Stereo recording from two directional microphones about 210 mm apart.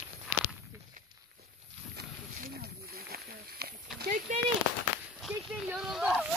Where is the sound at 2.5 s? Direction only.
45° right (ahead or behind).